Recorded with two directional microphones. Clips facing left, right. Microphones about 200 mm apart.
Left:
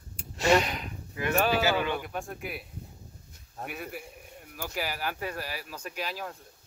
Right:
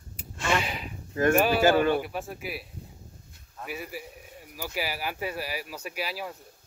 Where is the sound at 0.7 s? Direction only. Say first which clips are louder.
Even; 5° right (ahead or behind).